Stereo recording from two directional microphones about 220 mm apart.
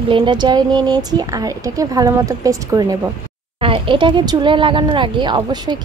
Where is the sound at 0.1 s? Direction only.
20° right (ahead or behind).